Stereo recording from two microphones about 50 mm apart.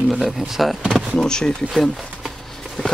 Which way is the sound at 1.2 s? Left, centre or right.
Centre.